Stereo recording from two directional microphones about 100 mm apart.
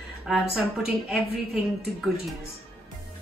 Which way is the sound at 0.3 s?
5° right (ahead or behind).